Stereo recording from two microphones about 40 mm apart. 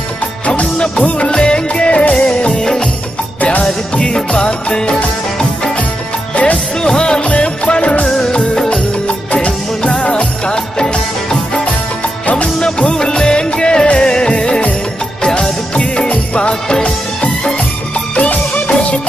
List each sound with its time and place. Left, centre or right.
0.5 s music: left
3.9 s music: left
6.3 s music: left
6.8 s music: left
11.6 s music: left
12.5 s music of bollywood: left
15.2 s music: centre